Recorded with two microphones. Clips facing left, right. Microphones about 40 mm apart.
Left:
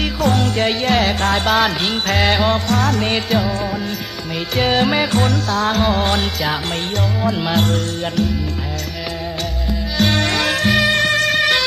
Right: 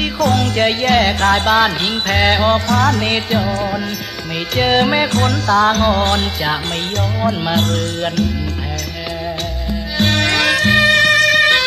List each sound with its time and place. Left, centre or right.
0.3 s music: centre
3.0 s music: centre
4.6 s music: centre
9.9 s music: centre